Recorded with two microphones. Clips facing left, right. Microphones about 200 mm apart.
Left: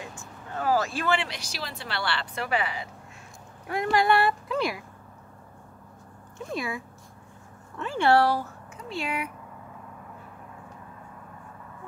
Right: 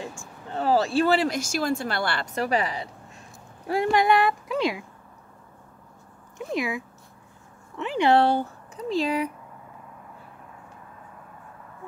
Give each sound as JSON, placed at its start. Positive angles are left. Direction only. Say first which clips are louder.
{"t": 0.5, "sound": "speech", "louder": "right 3 dB", "side_deg": -30}
{"t": 4.0, "sound": "speech", "louder": "right 2 dB", "side_deg": -15}
{"t": 6.3, "sound": "speech", "louder": "right 4 dB", "side_deg": -15}